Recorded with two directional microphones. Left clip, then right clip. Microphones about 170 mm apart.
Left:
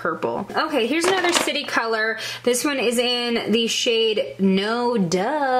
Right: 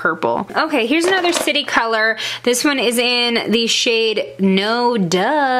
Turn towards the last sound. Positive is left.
turn(degrees=-30)  # may be behind; listen again after turning